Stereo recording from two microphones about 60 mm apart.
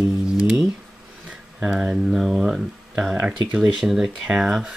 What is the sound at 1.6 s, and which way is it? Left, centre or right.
Speech, centre.